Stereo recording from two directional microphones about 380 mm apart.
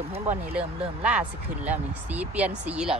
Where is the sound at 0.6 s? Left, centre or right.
Centre.